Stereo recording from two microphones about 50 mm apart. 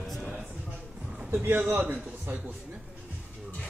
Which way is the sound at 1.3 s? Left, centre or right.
Right.